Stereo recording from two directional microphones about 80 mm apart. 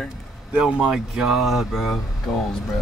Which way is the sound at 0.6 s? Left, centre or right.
Centre.